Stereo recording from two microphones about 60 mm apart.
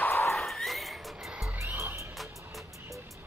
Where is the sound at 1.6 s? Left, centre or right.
Right.